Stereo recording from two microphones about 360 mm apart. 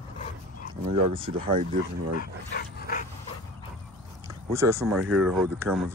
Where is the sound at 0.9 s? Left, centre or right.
Centre.